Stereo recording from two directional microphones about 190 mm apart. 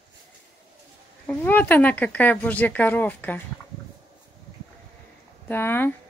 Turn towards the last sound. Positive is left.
turn(degrees=10)  # may be behind; listen again after turning